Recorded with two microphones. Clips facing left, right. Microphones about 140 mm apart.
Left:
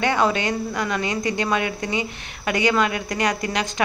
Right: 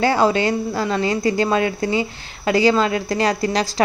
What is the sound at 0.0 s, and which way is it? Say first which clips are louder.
A woman's voice: right 4 dB; 30° right (ahead or behind).